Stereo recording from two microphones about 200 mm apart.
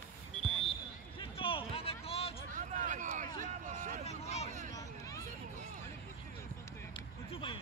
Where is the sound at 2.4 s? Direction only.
40° right (ahead or behind).